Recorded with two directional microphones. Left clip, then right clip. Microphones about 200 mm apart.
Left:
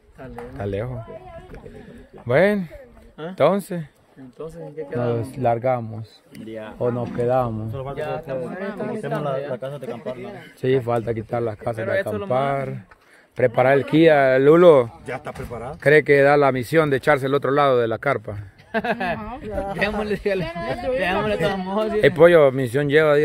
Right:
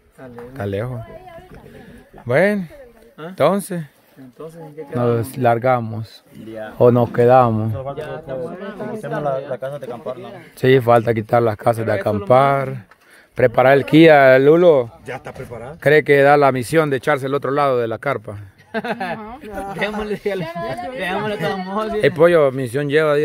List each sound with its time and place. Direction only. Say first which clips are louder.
0.6 s speech: right 3 dB; 25° right (ahead or behind)
2.2 s speech: right 2 dB; 15° right (ahead or behind)
4.4 s speech: even; centre (ahead or behind)
4.9 s a man's voice: right 5 dB; 40° right (ahead or behind)
6.8 s speech: right 11 dB; 55° right (ahead or behind)
8.0 s a man's voice: even; 55° left (ahead or behind)
9.2 s speech: right 3 dB; 5° right (ahead or behind)
10.6 s a man's voice: right 8 dB; 45° right (ahead or behind)
14.6 s speech: even; centre (ahead or behind)
15.0 s speech: even; 10° right (ahead or behind)
18.7 s a man's voice: left 1 dB; 10° left (ahead or behind)
19.4 s speech: left 1 dB; 60° right (ahead or behind)
19.8 s a man's voice: right 1 dB; 10° left (ahead or behind)
22.0 s speech: even; 10° right (ahead or behind)